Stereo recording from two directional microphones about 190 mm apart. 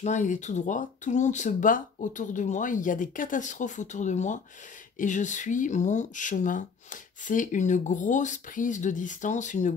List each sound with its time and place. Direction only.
0.0 s speech: 40° left (ahead or behind)